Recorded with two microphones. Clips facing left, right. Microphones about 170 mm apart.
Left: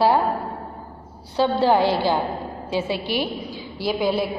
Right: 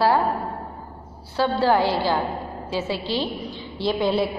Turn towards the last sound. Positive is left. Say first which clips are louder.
# right 1 dB
turn(degrees=5)  # may be behind; listen again after turning